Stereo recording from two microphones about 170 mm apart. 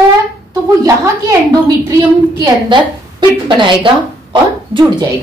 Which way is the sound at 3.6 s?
30° right (ahead or behind).